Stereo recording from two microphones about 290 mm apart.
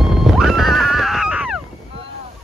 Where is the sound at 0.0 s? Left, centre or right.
Centre.